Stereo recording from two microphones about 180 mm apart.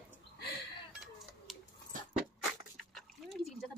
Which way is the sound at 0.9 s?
5° right (ahead or behind).